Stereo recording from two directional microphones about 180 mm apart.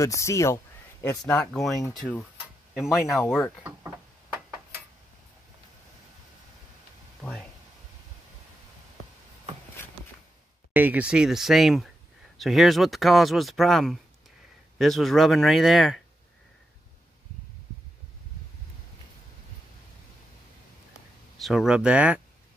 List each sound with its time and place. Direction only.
0.0 s speech: 15° left (ahead or behind)
1.5 s speech: centre (ahead or behind)
7.2 s a sound: 15° left (ahead or behind)
10.7 s speech: 10° right (ahead or behind)
21.4 s speech: centre (ahead or behind)